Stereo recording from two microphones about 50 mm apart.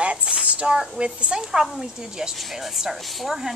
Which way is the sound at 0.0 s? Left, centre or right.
Right.